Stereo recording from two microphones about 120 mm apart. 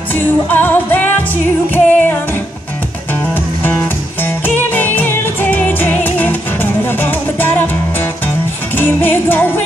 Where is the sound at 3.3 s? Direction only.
15° left (ahead or behind).